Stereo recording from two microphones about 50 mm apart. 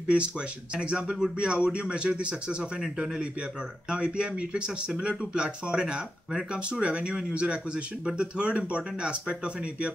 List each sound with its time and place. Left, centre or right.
0.7 s speech: centre